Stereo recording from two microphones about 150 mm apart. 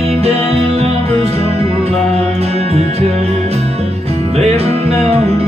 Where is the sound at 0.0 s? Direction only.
45° right (ahead or behind).